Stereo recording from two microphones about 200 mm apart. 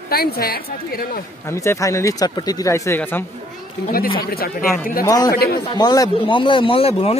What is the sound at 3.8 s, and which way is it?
Speech, 50° left (ahead or behind).